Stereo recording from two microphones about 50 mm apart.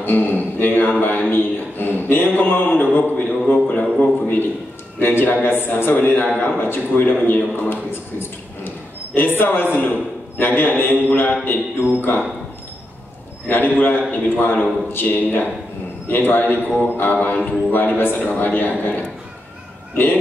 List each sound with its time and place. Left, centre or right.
0.0 s a man's voice: left
4.0 s a sound: left
4.9 s a man's voice: left
9.4 s a man's voice: left
13.5 s a man's voice: left
17.4 s speech: left
17.7 s a man's voice: left